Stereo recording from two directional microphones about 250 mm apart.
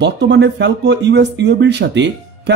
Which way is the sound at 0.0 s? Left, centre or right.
Right.